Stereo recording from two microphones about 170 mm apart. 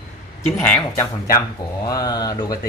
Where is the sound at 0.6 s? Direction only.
10° left (ahead or behind).